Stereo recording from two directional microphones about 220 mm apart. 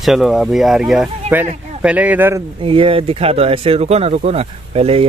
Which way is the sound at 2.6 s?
25° right (ahead or behind).